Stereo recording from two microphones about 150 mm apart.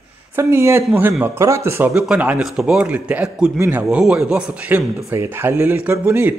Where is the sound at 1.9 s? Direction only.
5° right (ahead or behind).